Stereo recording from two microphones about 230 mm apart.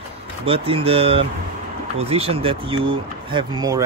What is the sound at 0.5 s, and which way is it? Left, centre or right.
Speech, right.